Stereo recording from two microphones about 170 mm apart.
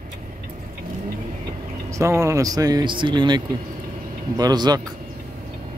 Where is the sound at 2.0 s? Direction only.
15° right (ahead or behind).